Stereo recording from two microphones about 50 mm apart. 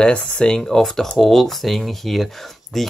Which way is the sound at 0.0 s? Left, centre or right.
Centre.